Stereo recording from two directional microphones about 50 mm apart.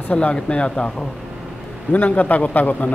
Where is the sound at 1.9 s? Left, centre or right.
Left.